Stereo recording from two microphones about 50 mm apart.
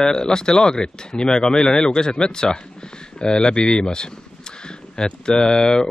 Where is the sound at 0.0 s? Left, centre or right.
Centre.